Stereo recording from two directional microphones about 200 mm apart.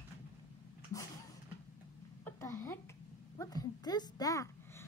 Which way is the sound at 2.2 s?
10° left (ahead or behind).